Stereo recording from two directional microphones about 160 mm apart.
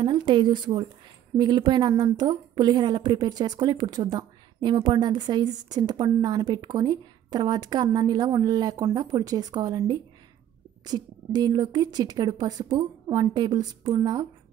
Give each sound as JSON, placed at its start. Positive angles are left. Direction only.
{"t": 0.0, "sound": "a woman's voice", "side_deg": -30}